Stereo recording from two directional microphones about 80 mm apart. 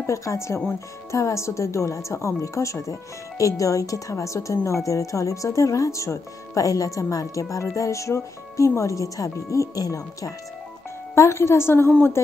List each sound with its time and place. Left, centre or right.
0.0 s speech: left
11.1 s speech: left